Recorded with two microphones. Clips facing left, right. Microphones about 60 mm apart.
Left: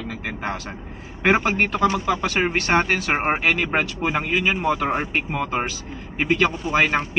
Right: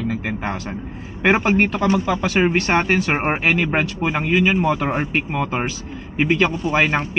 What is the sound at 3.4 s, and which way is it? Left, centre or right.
Speech, centre.